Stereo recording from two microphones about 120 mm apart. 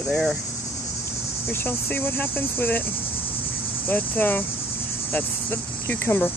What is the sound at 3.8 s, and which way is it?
Speech, 15° left (ahead or behind).